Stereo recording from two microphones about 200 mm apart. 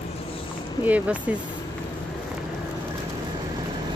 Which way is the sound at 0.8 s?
5° right (ahead or behind).